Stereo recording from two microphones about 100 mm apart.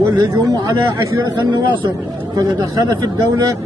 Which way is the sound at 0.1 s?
40° right (ahead or behind).